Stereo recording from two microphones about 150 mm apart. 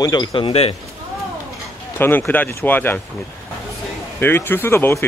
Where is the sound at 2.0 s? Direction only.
15° left (ahead or behind).